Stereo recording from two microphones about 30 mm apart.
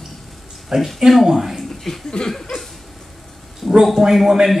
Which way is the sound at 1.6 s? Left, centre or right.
Centre.